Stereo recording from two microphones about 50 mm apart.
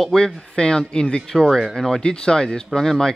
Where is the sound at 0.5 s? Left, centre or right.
Centre.